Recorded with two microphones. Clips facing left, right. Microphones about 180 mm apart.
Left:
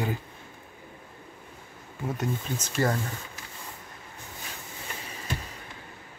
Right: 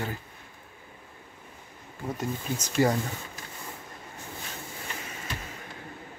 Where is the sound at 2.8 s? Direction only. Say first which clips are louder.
Right 3 dB; 10° right (ahead or behind).